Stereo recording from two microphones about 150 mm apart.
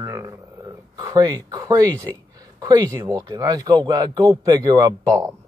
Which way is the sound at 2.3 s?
25° right (ahead or behind).